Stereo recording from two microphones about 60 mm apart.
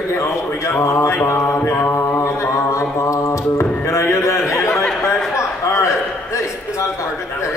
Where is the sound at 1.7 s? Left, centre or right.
Left.